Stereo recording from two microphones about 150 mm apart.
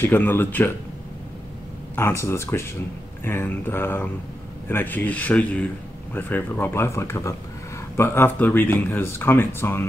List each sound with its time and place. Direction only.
0.0 s speech: 10° left (ahead or behind)
2.0 s speech: 15° left (ahead or behind)